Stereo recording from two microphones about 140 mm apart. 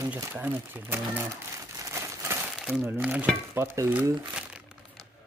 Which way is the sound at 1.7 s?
20° right (ahead or behind).